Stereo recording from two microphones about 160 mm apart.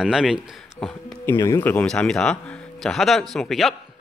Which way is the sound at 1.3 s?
20° left (ahead or behind).